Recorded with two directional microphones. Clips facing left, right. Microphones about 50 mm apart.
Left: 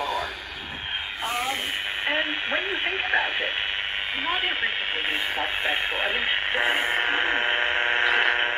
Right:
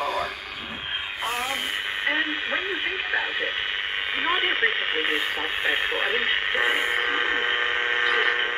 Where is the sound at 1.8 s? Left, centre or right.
Centre; by 3.2 s left.